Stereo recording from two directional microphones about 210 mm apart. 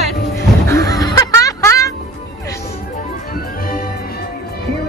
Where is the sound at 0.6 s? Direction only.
15° left (ahead or behind).